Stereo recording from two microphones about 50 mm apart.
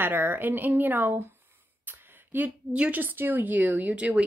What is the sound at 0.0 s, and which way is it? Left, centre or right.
Speech, right.